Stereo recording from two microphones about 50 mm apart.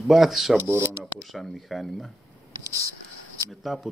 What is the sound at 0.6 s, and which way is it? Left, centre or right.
Speech, right.